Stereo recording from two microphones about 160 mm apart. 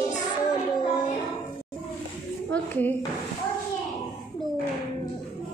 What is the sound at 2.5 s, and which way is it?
Speech, 10° left (ahead or behind).